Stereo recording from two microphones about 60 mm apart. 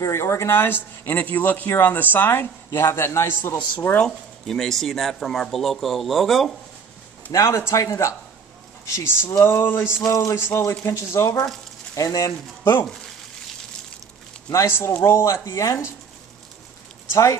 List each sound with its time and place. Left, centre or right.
0.0 s speech: left
3.3 s speech: left
4.0 s speech: centre
7.3 s speech: left
7.8 s speech: left
9.0 s speech: left
10.0 s speech: left
10.3 s speech: left
11.9 s speech: left
14.8 s speech: left
15.4 s speech: left
17.1 s speech: left